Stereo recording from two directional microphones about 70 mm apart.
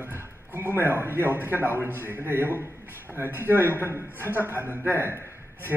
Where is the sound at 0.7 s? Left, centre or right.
Right.